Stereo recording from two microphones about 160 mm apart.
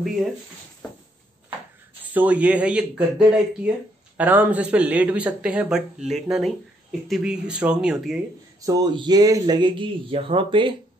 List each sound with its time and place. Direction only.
2.1 s speech: 10° right (ahead or behind)
8.5 s speech: 20° right (ahead or behind)